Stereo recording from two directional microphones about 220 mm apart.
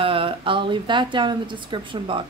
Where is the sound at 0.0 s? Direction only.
25° right (ahead or behind).